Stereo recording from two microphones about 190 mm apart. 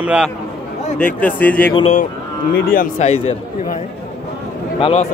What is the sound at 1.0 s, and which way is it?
Speech, 10° left (ahead or behind).